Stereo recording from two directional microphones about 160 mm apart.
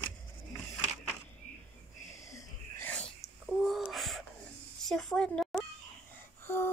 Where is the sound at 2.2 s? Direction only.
20° left (ahead or behind).